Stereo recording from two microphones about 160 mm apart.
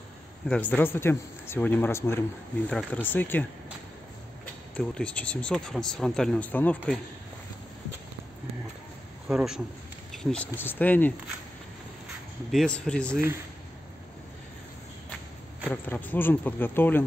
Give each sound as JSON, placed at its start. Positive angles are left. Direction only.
{"t": 0.5, "sound": "speech", "side_deg": 10}
{"t": 4.7, "sound": "speech", "side_deg": 5}
{"t": 9.3, "sound": "speech", "side_deg": -5}
{"t": 10.1, "sound": "speech", "side_deg": 5}
{"t": 12.4, "sound": "speech", "side_deg": 5}
{"t": 15.7, "sound": "speech", "side_deg": 10}